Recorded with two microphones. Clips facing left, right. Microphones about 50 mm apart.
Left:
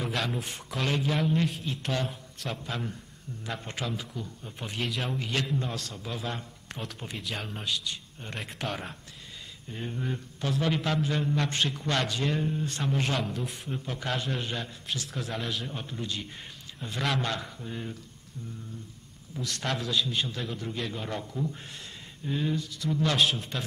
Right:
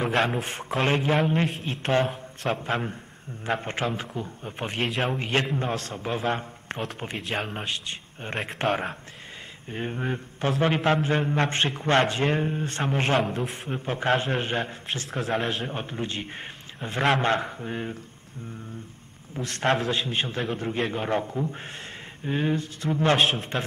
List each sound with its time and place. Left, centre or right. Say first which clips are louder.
0.0 s a man's voice: right 7 dB; right
19.3 s a man's voice: right 8 dB; right